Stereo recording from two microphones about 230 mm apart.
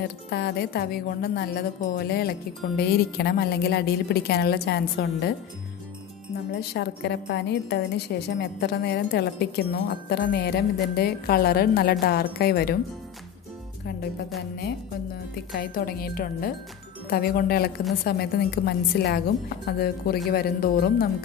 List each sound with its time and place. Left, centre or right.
0.3 s a woman's voice: left
6.7 s a woman's voice: left
15.5 s a woman's voice: left